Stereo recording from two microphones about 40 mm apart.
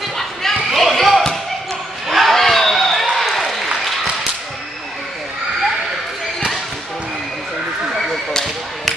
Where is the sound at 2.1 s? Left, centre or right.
Centre.